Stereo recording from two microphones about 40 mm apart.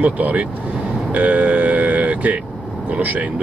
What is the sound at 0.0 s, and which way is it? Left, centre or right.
Speech, right.